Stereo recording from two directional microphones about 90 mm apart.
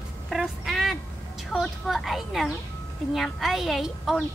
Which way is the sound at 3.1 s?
Centre (ahead or behind).